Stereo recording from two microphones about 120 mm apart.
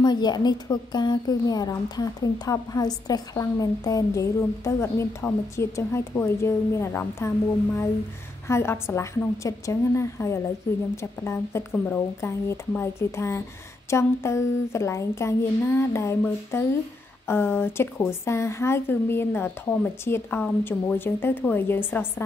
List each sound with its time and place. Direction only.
0.0 s a woman's voice: 35° left (ahead or behind); by 22.0 s 20° left (ahead or behind)